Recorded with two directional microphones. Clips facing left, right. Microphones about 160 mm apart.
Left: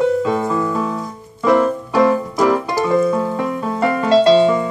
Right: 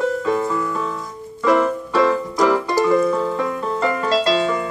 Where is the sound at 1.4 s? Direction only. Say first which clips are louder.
Left 2 dB; 15° left (ahead or behind).